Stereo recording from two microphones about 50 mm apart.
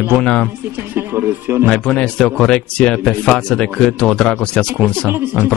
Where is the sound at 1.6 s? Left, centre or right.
Left.